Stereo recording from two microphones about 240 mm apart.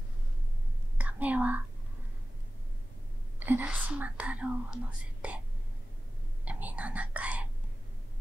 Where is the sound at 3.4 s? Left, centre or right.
Centre.